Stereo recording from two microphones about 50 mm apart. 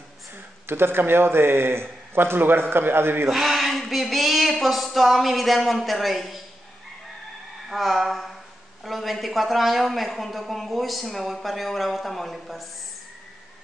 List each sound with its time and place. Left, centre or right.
0.7 s a man's voice: right
3.3 s a woman's voice: centre
7.7 s a woman's voice: centre